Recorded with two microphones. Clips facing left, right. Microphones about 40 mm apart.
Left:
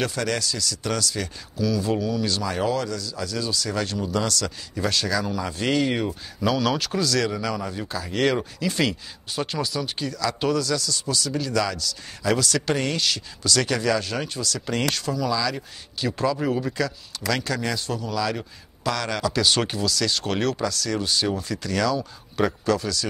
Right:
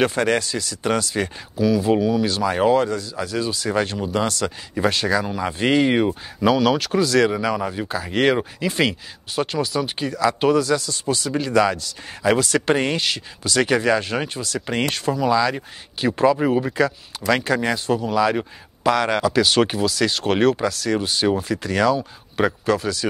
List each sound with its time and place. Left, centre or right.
0.0 s speech: right
9.3 s speech: centre
9.8 s speech: right
19.3 s speech: centre
19.7 s speech: right